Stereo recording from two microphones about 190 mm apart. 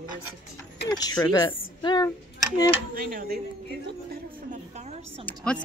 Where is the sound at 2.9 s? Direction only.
50° right (ahead or behind).